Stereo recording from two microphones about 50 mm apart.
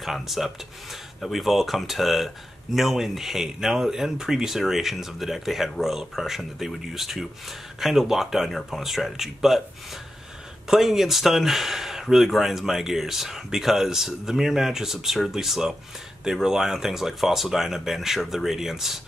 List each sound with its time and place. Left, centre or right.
0.0 s speech: centre
10.7 s speech: centre